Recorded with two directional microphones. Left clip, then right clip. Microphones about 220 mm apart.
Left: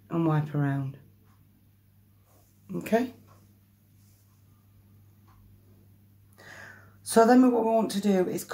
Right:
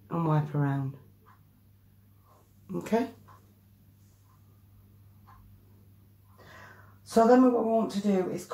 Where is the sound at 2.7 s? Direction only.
5° left (ahead or behind).